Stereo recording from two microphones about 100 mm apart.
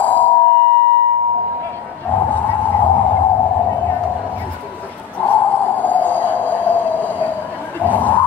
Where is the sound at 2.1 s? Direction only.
20° left (ahead or behind).